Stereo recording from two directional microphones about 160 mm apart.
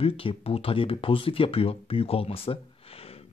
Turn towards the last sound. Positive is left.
turn(degrees=40)  # may be behind; listen again after turning